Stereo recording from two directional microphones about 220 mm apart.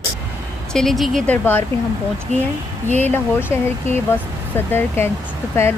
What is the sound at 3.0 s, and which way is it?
Speech, 10° left (ahead or behind).